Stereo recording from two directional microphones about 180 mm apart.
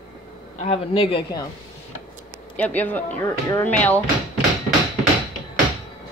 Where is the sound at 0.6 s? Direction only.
30° left (ahead or behind).